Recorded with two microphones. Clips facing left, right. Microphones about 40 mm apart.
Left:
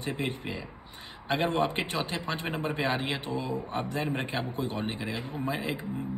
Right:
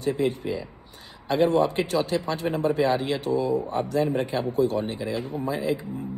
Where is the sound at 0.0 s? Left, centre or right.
Left.